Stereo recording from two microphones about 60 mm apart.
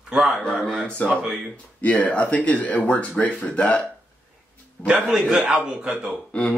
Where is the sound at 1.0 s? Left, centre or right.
Left.